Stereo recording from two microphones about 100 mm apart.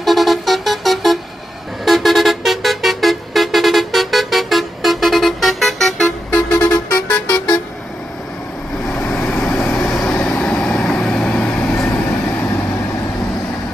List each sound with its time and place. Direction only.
0.0 s music: centre (ahead or behind)
6.5 s music: 15° left (ahead or behind)
8.8 s vehicle: 10° left (ahead or behind)
9.8 s vehicle: 5° left (ahead or behind)